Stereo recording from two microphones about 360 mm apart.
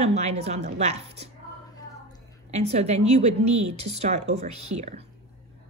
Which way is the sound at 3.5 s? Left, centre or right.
Right.